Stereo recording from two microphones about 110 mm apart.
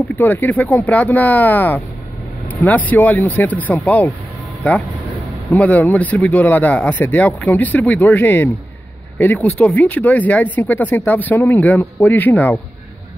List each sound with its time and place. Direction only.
0.1 s speech: 15° left (ahead or behind)